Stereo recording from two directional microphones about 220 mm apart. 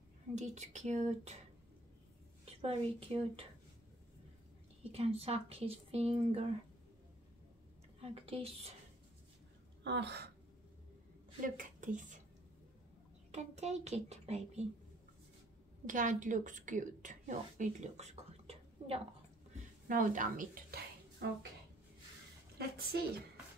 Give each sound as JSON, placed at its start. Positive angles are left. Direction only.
{"t": 0.3, "sound": "speech", "side_deg": -30}
{"t": 3.0, "sound": "speech", "side_deg": -25}
{"t": 4.9, "sound": "speech", "side_deg": -25}
{"t": 8.0, "sound": "speech", "side_deg": -25}
{"t": 9.8, "sound": "a woman's voice", "side_deg": -50}
{"t": 11.4, "sound": "a woman's voice", "side_deg": -35}
{"t": 13.3, "sound": "speech", "side_deg": -30}
{"t": 15.9, "sound": "a woman's voice", "side_deg": -35}
{"t": 22.6, "sound": "a woman's voice", "side_deg": -45}